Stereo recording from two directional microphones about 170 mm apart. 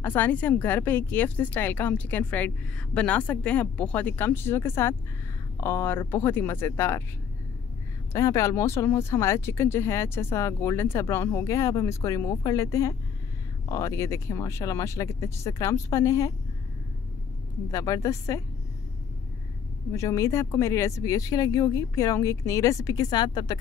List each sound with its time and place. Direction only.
0.0 s a woman's voice: 10° left (ahead or behind)
8.1 s a woman's voice: 20° left (ahead or behind)
17.6 s speech: 20° left (ahead or behind)
19.9 s speech: 15° left (ahead or behind)